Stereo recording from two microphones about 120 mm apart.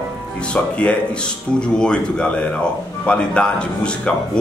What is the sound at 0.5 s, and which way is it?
A man's voice, 10° left (ahead or behind).